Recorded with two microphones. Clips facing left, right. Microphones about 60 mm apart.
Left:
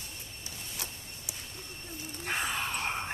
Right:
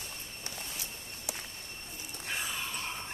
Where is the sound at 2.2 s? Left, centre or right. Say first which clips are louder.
Left 5 dB; left.